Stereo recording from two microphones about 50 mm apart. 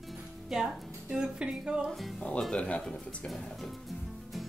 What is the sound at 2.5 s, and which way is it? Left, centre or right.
Speech, left.